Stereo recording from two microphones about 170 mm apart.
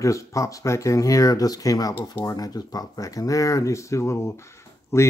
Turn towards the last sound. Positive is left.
turn(degrees=15)  # may be behind; listen again after turning